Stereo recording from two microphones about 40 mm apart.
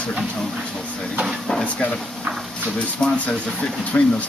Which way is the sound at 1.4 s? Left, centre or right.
Centre.